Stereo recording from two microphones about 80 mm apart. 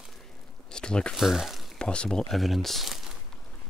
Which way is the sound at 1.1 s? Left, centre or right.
Centre.